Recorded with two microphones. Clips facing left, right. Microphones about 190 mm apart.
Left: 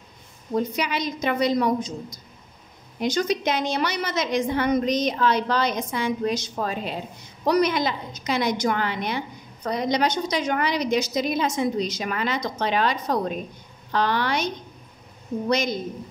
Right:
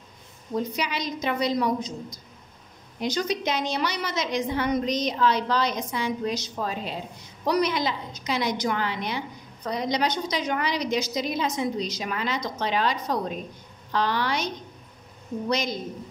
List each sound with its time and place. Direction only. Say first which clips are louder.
0.7 s a woman's voice: left 3 dB; 55° left (ahead or behind)
3.0 s a woman's voice: left 3 dB; 55° left (ahead or behind)